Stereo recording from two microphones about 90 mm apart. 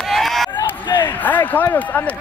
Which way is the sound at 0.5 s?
60° left (ahead or behind).